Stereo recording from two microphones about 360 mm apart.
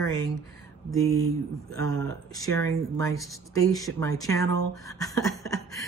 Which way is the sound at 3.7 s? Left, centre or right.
Centre.